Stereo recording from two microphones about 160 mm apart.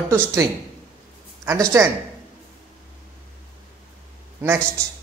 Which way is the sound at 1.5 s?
20° right (ahead or behind).